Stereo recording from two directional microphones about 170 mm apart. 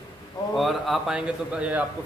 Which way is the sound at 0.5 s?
Centre (ahead or behind).